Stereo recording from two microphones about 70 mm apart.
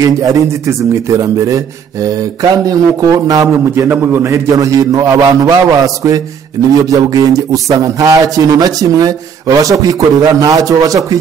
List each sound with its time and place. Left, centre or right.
0.0 s speech: right
3.9 s a man's voice: right
4.3 s a man's voice: right